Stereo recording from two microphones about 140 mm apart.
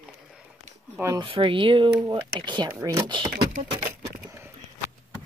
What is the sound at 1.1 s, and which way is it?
Speech, 40° right (ahead or behind).